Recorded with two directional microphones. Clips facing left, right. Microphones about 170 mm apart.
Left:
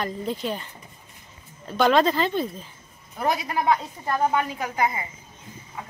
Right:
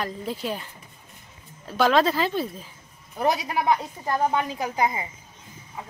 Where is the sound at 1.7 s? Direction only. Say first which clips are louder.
Left 1 dB; centre (ahead or behind).